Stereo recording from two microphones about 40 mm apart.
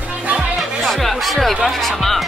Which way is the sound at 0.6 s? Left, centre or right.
Centre.